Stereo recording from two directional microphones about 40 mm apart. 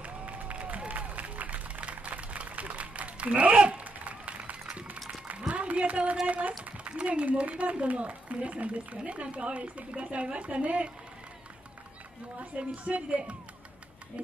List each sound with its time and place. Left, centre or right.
0.0 s applause: right
1.8 s a sound: right
6.2 s speech: right
12.4 s speech: right